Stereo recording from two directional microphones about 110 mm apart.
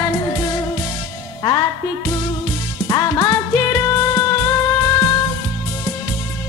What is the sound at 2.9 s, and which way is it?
Music, 35° left (ahead or behind).